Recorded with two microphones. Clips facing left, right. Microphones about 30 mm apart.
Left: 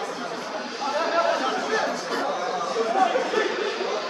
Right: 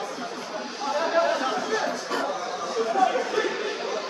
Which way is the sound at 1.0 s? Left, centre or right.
Centre.